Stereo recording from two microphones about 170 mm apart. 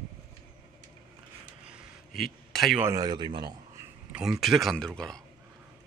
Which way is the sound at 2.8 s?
20° right (ahead or behind).